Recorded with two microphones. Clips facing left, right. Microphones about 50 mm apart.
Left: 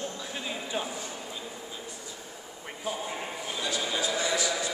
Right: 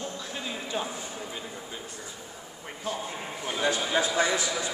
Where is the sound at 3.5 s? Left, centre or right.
Right.